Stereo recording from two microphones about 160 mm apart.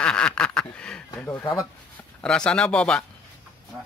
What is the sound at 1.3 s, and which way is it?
Speech, 20° left (ahead or behind).